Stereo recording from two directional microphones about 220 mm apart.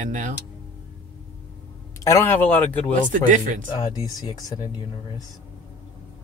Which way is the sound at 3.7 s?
15° left (ahead or behind).